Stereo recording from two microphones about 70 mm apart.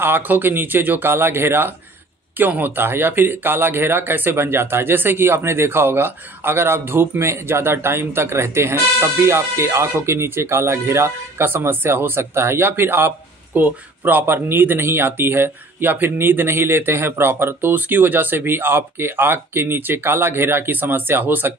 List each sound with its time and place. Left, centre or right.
0.0 s speech: right